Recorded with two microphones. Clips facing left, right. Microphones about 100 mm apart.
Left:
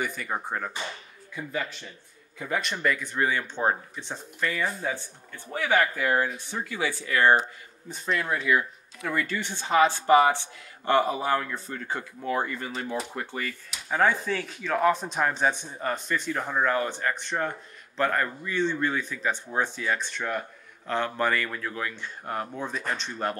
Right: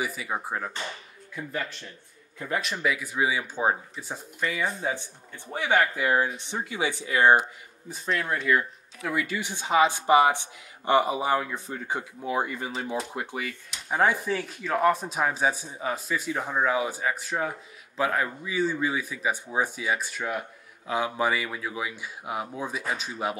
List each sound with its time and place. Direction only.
0.0 s speech: 5° right (ahead or behind)
7.9 s speech: centre (ahead or behind)
9.1 s speech: 5° right (ahead or behind)